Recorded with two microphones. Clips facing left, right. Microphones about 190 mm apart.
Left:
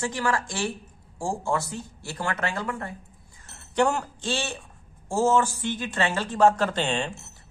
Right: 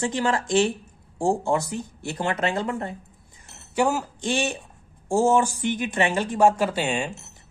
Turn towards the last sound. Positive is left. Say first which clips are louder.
# right 1 dB
turn(degrees=-10)  # may be behind; listen again after turning